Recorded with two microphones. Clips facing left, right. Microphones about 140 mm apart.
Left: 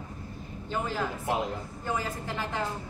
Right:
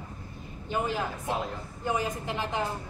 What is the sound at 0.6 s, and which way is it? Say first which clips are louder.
A man's voice: right 1 dB; 15° right (ahead or behind).